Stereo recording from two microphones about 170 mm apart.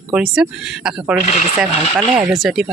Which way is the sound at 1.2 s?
45° left (ahead or behind).